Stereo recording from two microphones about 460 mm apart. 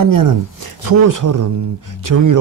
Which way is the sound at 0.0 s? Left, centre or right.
Right.